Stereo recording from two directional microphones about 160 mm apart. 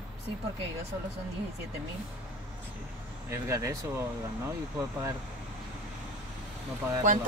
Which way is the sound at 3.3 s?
20° right (ahead or behind).